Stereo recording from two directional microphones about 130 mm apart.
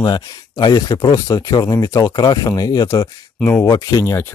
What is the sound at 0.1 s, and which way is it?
Speech, 30° left (ahead or behind).